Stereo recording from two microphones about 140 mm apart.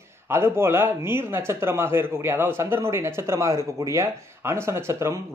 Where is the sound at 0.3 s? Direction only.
15° right (ahead or behind).